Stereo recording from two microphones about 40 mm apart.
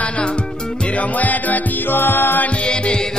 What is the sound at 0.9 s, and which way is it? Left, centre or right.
Music, left.